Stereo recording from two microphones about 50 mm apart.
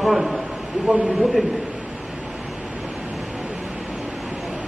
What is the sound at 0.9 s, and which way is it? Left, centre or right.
Speech, right.